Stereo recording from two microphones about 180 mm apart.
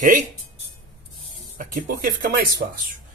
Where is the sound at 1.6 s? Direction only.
50° right (ahead or behind).